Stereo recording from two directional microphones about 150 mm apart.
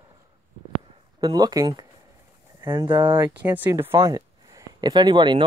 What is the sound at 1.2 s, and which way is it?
Speech, 25° right (ahead or behind).